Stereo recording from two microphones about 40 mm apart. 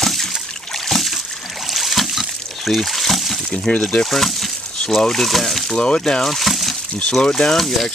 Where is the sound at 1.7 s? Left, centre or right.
Centre.